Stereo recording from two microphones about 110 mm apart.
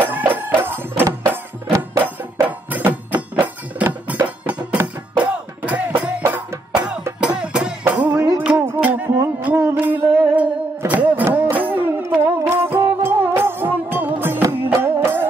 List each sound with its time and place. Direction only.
0.0 s music: 20° right (ahead or behind)